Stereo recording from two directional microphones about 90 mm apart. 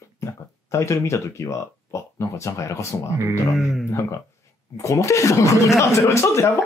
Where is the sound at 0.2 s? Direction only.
35° left (ahead or behind).